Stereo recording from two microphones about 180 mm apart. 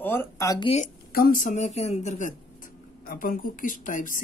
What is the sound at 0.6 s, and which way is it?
Speech, 35° left (ahead or behind).